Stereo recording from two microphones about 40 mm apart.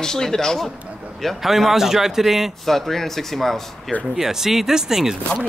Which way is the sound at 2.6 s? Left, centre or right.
Centre.